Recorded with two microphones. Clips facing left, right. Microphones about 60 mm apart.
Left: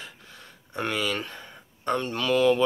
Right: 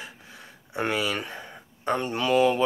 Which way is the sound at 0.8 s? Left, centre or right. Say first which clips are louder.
Right 1 dB; centre.